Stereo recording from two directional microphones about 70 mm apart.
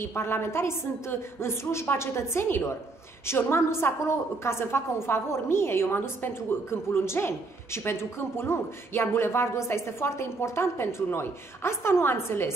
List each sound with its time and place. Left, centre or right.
0.0 s a woman's voice: left